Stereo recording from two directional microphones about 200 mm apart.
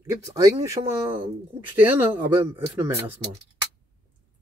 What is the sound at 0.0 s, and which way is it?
Speech, 15° right (ahead or behind).